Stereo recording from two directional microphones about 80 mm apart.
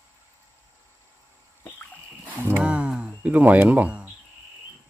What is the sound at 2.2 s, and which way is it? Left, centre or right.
Music, right.